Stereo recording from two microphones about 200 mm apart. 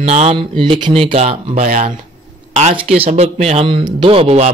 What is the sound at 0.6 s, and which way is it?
A man's voice, 25° right (ahead or behind).